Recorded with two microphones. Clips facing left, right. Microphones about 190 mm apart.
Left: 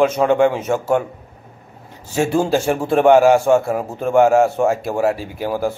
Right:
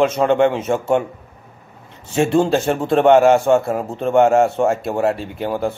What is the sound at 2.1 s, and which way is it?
A man's voice, 5° left (ahead or behind).